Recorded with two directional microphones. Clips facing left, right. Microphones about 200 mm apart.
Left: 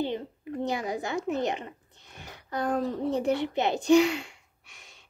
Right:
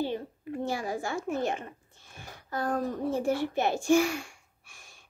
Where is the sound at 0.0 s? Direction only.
20° left (ahead or behind).